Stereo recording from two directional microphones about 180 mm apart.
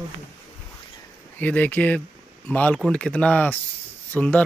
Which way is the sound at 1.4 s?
10° left (ahead or behind).